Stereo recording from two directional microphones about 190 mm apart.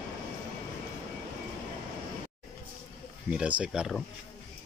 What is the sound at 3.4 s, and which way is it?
Speech, 5° right (ahead or behind).